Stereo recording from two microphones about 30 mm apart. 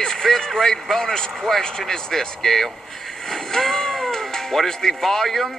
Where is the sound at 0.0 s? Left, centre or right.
Centre.